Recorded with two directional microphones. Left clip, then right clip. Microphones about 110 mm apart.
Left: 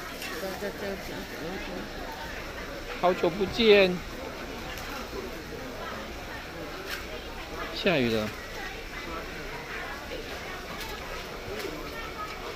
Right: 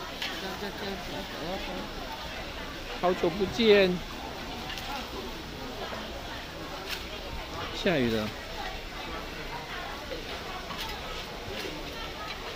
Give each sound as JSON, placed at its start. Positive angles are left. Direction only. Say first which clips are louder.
{"t": 3.0, "sound": "speech", "louder": "left 2 dB", "side_deg": -25}
{"t": 7.8, "sound": "speech", "louder": "left 2 dB", "side_deg": -15}